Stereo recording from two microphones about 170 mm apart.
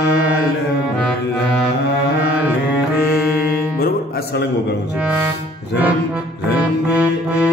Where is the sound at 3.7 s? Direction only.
60° left (ahead or behind).